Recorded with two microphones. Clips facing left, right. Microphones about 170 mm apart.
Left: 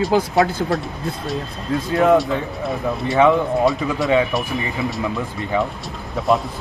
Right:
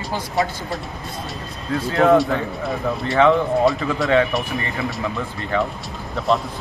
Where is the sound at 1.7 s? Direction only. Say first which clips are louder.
Even; 20° left (ahead or behind).